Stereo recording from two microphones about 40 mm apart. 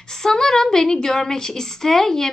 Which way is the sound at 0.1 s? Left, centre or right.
Centre.